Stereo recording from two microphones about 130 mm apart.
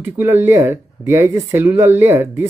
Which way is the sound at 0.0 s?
15° right (ahead or behind).